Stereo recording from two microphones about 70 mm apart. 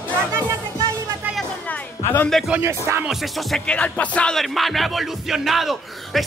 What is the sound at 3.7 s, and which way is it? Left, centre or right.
Music, centre.